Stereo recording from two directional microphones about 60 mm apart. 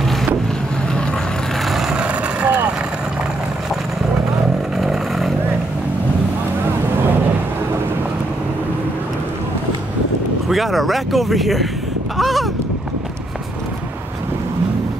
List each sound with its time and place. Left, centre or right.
1.7 s vehicle: centre
2.0 s vehicle: right
4.7 s vehicle: centre
10.5 s speech: centre
12.2 s a sound: centre